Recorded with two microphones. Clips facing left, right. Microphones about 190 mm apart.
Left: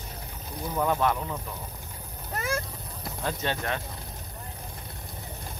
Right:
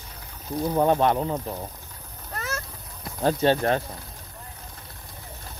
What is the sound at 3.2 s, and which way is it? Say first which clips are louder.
Speech: right 10 dB; 35° right (ahead or behind).